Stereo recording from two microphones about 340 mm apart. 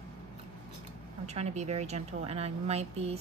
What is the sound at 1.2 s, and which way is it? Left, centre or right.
Speech, centre.